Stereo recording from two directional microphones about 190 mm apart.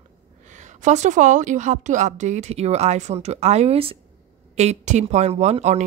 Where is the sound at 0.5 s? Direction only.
40° right (ahead or behind).